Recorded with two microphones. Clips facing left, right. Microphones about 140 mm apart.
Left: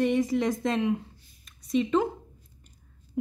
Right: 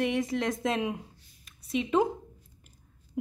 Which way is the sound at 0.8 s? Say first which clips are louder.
Left 5 dB; 15° right (ahead or behind).